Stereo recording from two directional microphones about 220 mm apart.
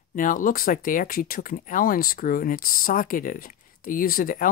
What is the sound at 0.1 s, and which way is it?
Speech, 35° left (ahead or behind).